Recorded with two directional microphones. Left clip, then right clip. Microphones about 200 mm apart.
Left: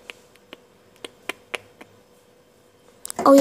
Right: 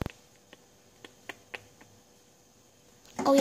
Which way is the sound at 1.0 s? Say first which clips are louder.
Left 12 dB; 10° left (ahead or behind).